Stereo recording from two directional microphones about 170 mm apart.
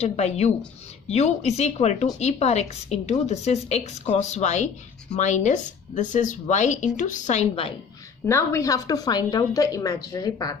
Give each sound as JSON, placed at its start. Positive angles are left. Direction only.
{"t": 0.0, "sound": "a woman's voice", "side_deg": 40}
{"t": 8.3, "sound": "a woman's voice", "side_deg": 15}